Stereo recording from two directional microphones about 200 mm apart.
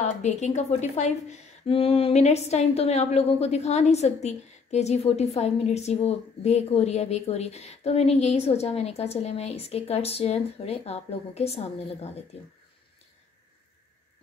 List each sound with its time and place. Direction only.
0.0 s a woman's voice: 35° left (ahead or behind)